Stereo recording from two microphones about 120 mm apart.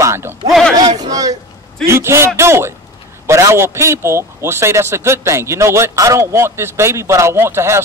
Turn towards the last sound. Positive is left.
turn(degrees=-20)  # may be behind; listen again after turning